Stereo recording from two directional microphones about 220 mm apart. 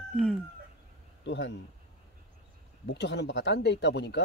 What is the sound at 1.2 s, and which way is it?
Speech, 55° left (ahead or behind).